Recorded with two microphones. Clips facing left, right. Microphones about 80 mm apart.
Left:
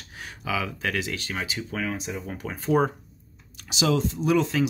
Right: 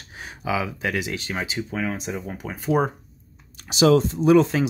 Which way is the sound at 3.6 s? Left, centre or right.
Right.